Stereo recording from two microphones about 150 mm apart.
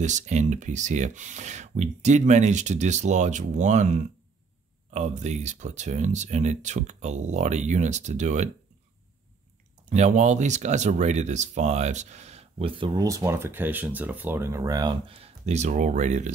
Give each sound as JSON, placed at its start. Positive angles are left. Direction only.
{"t": 0.0, "sound": "speech", "side_deg": -50}
{"t": 9.8, "sound": "speech", "side_deg": -50}